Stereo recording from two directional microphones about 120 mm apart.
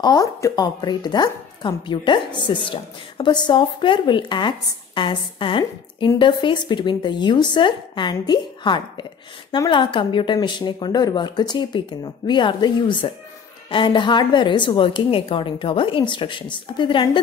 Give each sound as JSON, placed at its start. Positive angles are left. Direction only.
{"t": 0.0, "sound": "a woman's voice", "side_deg": 30}